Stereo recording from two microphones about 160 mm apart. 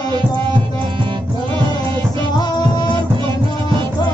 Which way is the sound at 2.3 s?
25° left (ahead or behind).